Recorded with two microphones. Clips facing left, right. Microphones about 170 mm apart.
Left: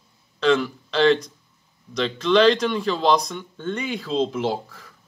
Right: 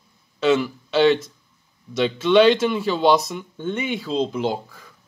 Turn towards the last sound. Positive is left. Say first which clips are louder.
# right 1 dB
turn(degrees=0)  # may be behind; listen again after turning